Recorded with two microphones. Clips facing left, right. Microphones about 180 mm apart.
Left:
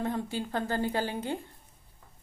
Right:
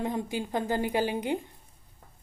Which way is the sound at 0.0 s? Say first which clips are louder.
Right 1 dB; 15° right (ahead or behind).